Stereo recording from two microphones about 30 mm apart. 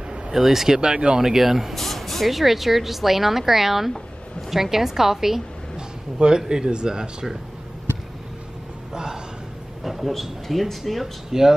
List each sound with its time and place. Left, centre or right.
0.3 s a woman's voice: centre
0.7 s speech: right
1.2 s a woman's voice: centre
1.8 s speech: centre
2.3 s a woman's voice: centre
5.8 s speech: right
8.9 s a sound: right
9.8 s speech: centre
11.3 s speech: centre